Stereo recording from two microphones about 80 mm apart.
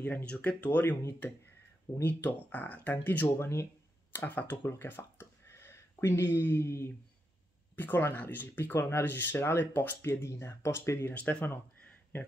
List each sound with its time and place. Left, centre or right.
0.0 s speech: centre
5.2 s a sound: left
7.7 s speech: left
11.1 s speech: left